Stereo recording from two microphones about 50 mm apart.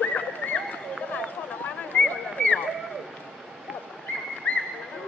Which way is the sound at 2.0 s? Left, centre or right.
Left.